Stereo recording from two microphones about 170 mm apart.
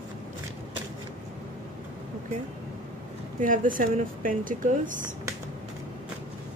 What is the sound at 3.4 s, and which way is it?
Speech, 55° right (ahead or behind).